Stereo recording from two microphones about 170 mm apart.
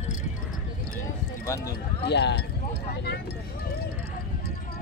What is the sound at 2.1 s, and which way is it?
Speech, 90° left.